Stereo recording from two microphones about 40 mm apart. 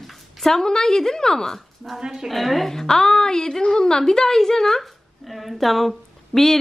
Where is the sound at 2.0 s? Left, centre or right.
Centre.